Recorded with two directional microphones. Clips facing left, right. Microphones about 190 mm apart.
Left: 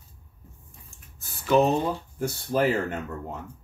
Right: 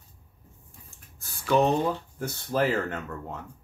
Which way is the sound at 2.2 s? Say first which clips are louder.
Left 2 dB; 10° left (ahead or behind).